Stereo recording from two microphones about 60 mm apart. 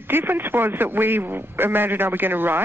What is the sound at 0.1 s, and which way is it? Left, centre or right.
Speech, right.